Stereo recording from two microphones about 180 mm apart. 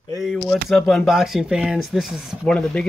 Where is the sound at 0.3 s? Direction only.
Centre (ahead or behind).